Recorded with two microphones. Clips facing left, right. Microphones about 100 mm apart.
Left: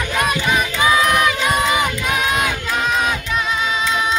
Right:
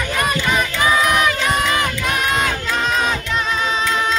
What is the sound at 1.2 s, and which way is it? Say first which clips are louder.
Crowd: left 1 dB; 10° left (ahead or behind).